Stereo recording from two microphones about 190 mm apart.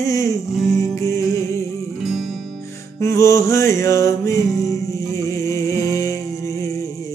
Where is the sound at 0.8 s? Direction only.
15° left (ahead or behind).